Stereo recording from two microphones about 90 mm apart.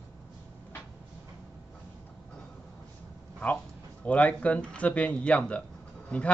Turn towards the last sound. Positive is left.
turn(degrees=10)  # may be behind; listen again after turning